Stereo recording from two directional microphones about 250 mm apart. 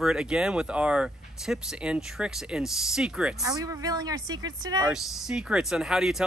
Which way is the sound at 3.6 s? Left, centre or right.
Centre.